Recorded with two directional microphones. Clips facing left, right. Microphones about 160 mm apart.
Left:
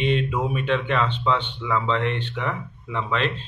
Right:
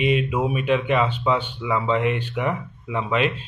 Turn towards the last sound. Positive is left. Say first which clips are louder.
# right 3 dB
turn(degrees=-10)  # may be behind; listen again after turning